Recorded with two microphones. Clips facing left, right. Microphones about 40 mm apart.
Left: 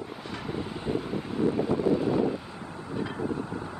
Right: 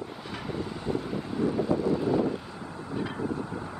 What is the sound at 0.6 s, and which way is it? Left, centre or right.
Wind, centre.